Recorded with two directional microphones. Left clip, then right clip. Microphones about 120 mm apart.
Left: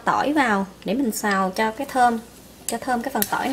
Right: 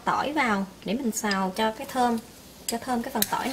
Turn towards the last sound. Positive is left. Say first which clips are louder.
# left 4 dB
turn(degrees=25)  # may be behind; listen again after turning